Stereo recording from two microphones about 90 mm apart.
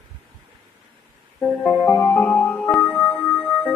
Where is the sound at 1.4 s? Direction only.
15° left (ahead or behind).